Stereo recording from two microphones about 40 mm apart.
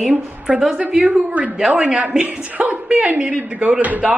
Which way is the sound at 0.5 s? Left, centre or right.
Right.